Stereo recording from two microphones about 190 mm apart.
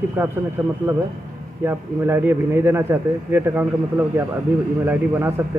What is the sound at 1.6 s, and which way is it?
A man's voice, 15° right (ahead or behind).